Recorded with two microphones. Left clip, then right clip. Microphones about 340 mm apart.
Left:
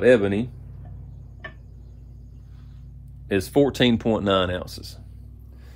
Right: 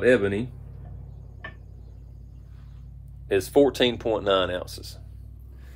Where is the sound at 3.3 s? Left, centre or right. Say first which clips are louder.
Right 1 dB; centre.